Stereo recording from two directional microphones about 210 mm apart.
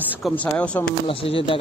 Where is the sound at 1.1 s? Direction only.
25° left (ahead or behind).